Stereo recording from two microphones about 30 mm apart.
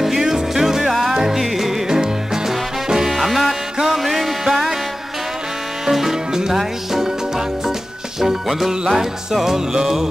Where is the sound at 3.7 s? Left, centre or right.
Centre.